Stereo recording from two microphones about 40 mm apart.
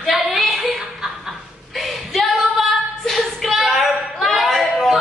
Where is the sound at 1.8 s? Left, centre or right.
Centre.